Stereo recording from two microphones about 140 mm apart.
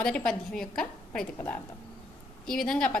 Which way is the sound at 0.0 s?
5° left (ahead or behind).